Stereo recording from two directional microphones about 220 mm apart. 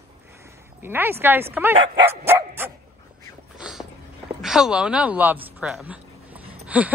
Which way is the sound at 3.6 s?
Centre (ahead or behind).